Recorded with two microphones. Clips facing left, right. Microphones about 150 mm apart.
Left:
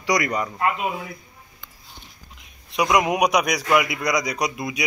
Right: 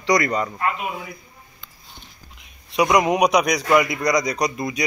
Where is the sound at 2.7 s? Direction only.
Centre (ahead or behind).